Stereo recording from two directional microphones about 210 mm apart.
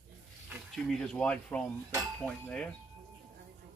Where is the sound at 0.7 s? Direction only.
5° left (ahead or behind).